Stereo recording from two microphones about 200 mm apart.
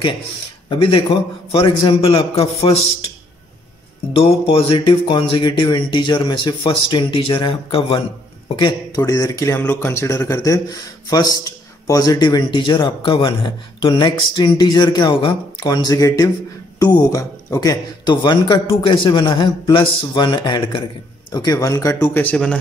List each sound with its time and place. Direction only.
0.7 s speech: 25° left (ahead or behind)
4.1 s speech: 30° left (ahead or behind); by 22.6 s 5° left (ahead or behind)